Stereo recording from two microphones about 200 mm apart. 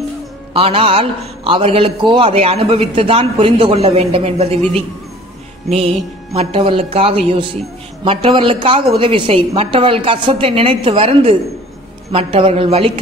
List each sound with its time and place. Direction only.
0.5 s a man's voice: 30° right (ahead or behind)
6.3 s a man's voice: 30° right (ahead or behind)